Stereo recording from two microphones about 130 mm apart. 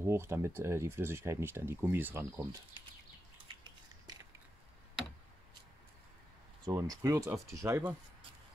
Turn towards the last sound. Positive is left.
turn(degrees=-25)  # may be behind; listen again after turning